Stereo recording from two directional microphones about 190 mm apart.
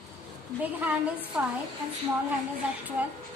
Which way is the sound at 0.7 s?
10° right (ahead or behind).